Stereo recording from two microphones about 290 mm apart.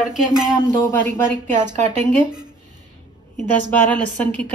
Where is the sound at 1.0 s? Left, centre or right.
Right.